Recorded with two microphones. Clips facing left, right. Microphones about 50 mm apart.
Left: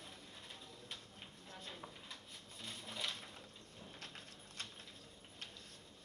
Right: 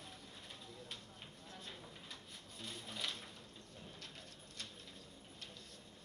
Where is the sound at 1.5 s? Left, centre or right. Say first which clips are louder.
Left 2 dB; left.